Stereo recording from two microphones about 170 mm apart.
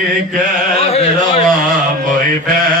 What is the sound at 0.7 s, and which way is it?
Carnatic music, 35° left (ahead or behind).